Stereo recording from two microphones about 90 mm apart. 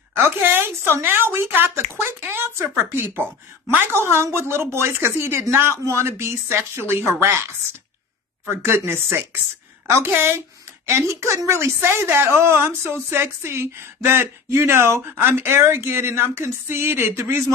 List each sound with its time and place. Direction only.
0.1 s speech: 25° right (ahead or behind)
8.5 s speech: 25° right (ahead or behind)